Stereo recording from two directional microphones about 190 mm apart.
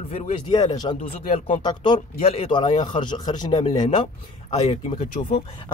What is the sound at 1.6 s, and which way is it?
Speech, 25° left (ahead or behind).